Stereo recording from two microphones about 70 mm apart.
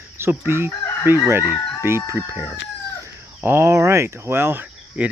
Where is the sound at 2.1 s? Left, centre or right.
Right.